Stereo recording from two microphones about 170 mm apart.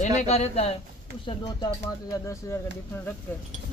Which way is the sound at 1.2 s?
25° left (ahead or behind).